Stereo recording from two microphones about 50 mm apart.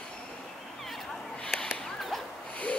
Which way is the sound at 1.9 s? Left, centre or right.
Centre.